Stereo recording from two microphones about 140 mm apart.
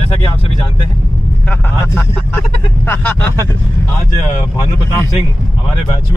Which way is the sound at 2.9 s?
10° left (ahead or behind).